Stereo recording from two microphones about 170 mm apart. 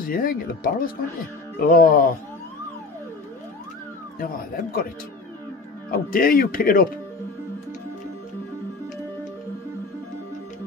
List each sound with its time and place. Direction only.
0.0 s speech: 55° left (ahead or behind)
4.2 s speech: 55° left (ahead or behind)
5.9 s speech: 55° left (ahead or behind)